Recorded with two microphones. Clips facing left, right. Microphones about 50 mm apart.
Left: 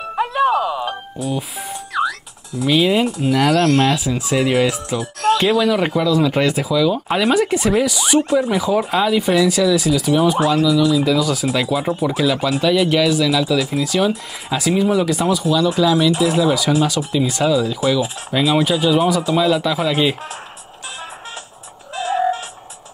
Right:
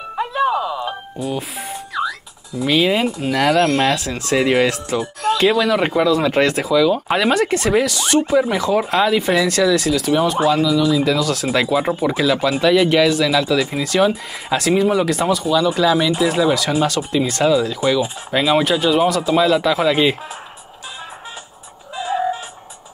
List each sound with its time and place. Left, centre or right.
0.5 s music: left
0.8 s music: centre
2.0 s speech: centre
3.9 s speech: centre
6.4 s speech: centre
7.8 s speech: centre
8.3 s speech: centre
22.0 s music: centre